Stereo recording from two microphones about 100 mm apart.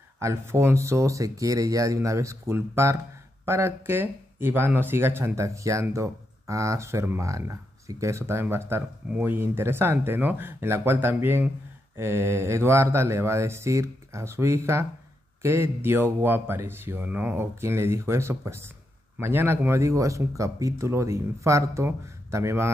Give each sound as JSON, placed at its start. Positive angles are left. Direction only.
{"t": 0.2, "sound": "speech", "side_deg": -25}